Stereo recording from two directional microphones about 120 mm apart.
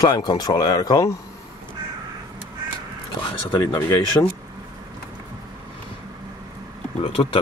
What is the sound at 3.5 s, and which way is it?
Speech, 35° left (ahead or behind).